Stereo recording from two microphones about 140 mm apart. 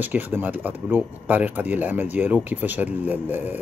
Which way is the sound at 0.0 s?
15° right (ahead or behind).